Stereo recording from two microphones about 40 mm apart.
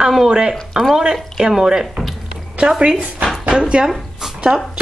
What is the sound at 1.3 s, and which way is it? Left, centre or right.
Speech, centre.